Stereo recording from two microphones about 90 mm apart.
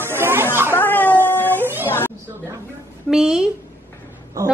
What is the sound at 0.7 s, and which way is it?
Cat, 25° left (ahead or behind).